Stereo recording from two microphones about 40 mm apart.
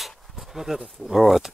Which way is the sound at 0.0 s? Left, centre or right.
Centre.